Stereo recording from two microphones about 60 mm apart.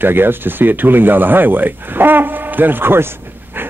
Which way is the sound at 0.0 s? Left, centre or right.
Right.